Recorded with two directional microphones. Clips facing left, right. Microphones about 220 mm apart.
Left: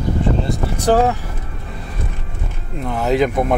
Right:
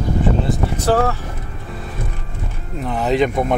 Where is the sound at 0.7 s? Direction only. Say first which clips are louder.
Left 3 dB; 15° left (ahead or behind).